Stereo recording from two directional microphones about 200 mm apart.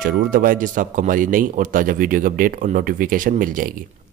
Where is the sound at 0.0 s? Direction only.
45° right (ahead or behind).